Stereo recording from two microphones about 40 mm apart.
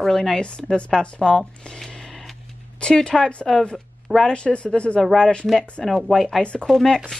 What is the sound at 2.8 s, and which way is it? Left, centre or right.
Speech, centre.